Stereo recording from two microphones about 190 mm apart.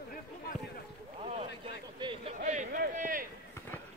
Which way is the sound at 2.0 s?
25° right (ahead or behind).